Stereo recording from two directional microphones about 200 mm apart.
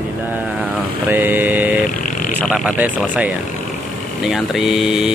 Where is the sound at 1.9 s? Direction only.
40° left (ahead or behind).